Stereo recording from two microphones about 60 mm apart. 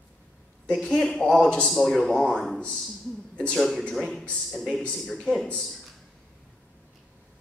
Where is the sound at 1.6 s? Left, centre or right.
Centre.